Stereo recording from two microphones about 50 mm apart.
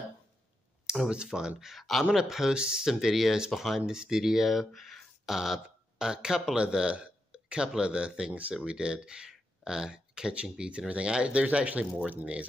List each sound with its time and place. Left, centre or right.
1.0 s speech: centre
1.6 s speech: centre
2.1 s speech: centre; by 12.4 s right